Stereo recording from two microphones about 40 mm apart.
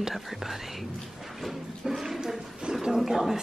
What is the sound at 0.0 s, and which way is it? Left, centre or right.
Whispering, centre.